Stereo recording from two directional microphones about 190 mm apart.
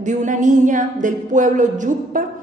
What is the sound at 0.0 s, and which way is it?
A woman's voice, 40° right (ahead or behind).